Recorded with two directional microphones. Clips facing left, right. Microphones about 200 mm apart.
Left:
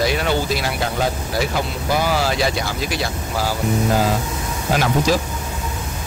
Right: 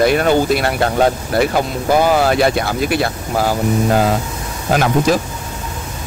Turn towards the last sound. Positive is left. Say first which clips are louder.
# right 4 dB
turn(degrees=-50)  # may be behind; listen again after turning